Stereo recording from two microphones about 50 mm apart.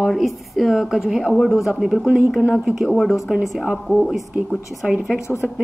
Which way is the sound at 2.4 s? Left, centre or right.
Right.